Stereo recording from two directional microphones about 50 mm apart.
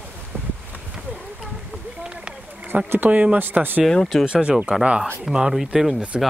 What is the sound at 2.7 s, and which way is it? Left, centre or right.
Speech, right.